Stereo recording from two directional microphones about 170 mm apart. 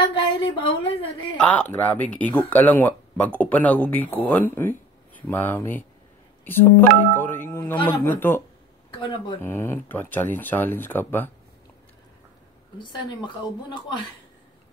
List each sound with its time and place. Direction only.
0.0 s a sound: 25° left (ahead or behind)
1.4 s speech: 10° left (ahead or behind)
8.9 s speech: 30° left (ahead or behind)
9.4 s speech: 15° left (ahead or behind)
12.7 s speech: 25° left (ahead or behind)